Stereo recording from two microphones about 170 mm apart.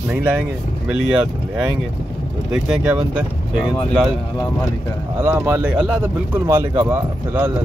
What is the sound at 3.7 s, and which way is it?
Speech, 5° left (ahead or behind).